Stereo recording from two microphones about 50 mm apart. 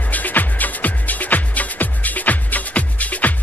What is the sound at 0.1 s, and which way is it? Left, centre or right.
Music, left.